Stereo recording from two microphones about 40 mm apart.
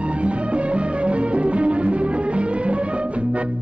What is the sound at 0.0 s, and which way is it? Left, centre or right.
Music, right.